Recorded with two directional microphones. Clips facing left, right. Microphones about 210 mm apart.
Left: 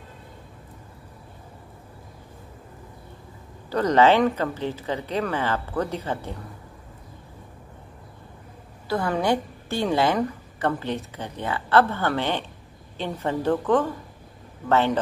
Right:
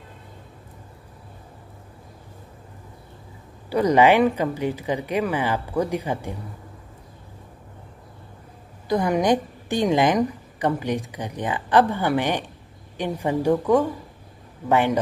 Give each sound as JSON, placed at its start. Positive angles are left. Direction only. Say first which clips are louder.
{"t": 3.7, "sound": "a woman's voice", "louder": "right 2 dB", "side_deg": -10}
{"t": 8.8, "sound": "a woman's voice", "louder": "right 3 dB", "side_deg": -15}